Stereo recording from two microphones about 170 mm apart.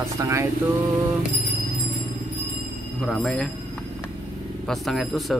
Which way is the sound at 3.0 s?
5° left (ahead or behind).